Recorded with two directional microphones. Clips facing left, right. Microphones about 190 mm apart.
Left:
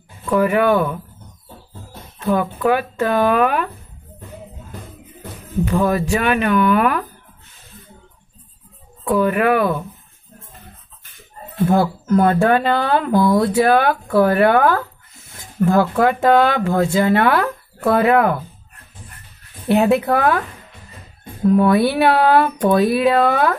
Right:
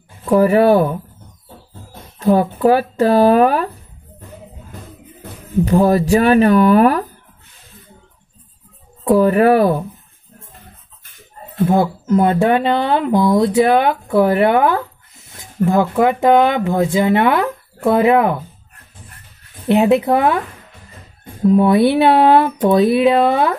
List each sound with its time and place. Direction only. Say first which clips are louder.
0.2 s speech: right 4 dB; 35° right (ahead or behind)
2.1 s speech: right 5 dB; 35° right (ahead or behind)
5.7 s speech: right 5 dB; 35° right (ahead or behind)
9.0 s speech: right 5 dB; 40° right (ahead or behind)
11.6 s speech: right 1 dB; 20° right (ahead or behind)
19.7 s speech: right 2 dB; 20° right (ahead or behind)
21.5 s speech: right 2 dB; 20° right (ahead or behind)